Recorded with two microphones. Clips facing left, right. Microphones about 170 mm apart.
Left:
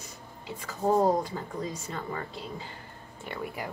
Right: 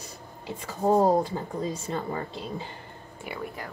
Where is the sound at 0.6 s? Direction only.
25° right (ahead or behind).